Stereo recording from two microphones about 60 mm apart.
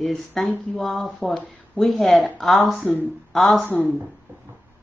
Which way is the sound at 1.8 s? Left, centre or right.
Centre.